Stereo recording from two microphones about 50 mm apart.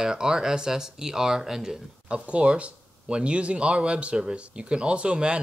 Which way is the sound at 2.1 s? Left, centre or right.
Right.